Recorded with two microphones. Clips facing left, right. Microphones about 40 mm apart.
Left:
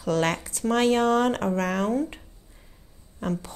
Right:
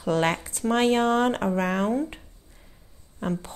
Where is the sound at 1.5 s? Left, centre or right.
Right.